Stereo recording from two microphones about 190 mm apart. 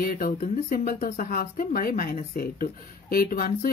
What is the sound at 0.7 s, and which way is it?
Speech, 50° left (ahead or behind).